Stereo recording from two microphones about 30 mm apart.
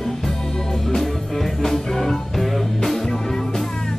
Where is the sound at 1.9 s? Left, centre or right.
Centre.